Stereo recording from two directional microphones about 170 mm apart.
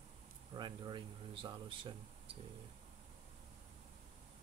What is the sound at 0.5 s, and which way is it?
Speech, 30° right (ahead or behind).